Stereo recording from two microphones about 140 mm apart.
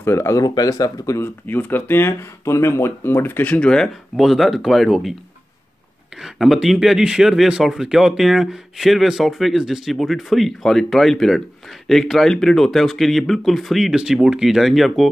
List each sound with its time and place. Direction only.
0.0 s speech: 20° left (ahead or behind); by 5.1 s centre (ahead or behind)
6.2 s speech: centre (ahead or behind)